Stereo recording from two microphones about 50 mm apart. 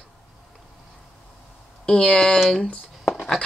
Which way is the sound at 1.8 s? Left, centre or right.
Centre.